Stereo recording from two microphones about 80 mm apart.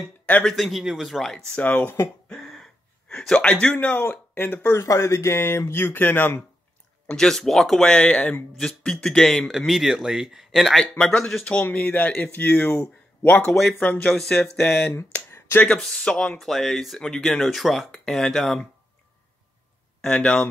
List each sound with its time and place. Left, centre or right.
0.6 s a man's voice: centre
1.5 s speech: left
2.2 s a sound: centre
3.1 s speech: centre
4.7 s speech: left
7.1 s a man's voice: centre; by 13.5 s left
13.5 s a man's voice: centre
13.7 s speech: centre
14.1 s a man's voice: centre
15.3 s a sound: left
15.8 s a man's voice: centre
20.0 s speech: centre